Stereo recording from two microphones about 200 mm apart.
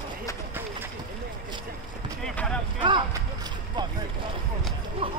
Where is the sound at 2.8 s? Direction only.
20° right (ahead or behind).